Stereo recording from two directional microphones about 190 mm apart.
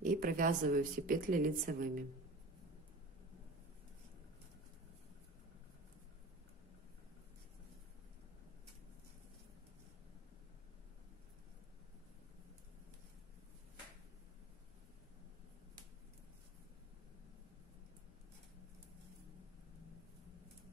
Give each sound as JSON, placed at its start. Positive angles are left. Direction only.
{"t": 0.0, "sound": "speech", "side_deg": -45}